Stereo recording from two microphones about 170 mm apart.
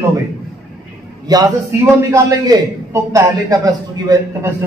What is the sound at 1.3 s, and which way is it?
A man's voice, 20° right (ahead or behind).